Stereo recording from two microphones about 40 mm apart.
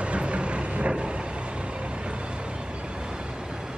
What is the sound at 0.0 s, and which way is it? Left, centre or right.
Vehicle, right.